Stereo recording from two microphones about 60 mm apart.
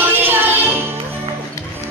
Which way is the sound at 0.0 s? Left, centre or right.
Right.